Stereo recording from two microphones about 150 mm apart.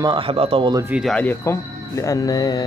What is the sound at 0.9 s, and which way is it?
Speech, 5° right (ahead or behind).